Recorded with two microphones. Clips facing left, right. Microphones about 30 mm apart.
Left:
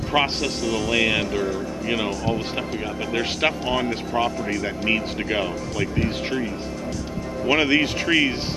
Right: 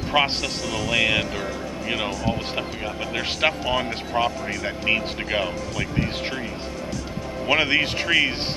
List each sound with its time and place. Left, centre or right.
0.1 s speech: centre
7.4 s speech: centre